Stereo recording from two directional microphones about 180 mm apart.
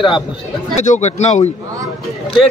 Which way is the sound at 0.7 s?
40° left (ahead or behind).